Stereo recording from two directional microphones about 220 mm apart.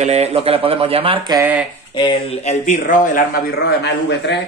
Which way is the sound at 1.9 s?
25° left (ahead or behind).